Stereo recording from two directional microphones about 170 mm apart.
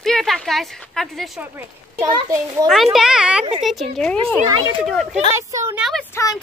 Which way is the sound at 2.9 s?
5° right (ahead or behind).